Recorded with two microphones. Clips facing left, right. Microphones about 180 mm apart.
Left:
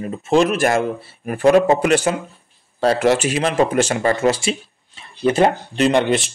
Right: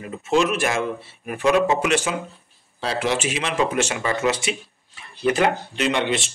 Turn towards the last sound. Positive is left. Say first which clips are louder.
# left 6 dB
turn(degrees=45)  # may be behind; listen again after turning